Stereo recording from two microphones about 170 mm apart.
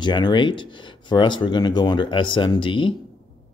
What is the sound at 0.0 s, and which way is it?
Speech, 25° left (ahead or behind).